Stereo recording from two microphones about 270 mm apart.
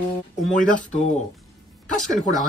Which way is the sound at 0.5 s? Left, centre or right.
Left.